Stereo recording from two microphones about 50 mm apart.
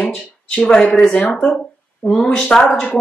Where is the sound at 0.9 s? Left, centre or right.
Centre.